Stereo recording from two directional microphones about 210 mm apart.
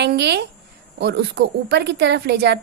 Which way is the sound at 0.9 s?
55° right (ahead or behind).